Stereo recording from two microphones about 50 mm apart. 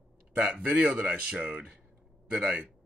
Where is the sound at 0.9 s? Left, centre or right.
Right.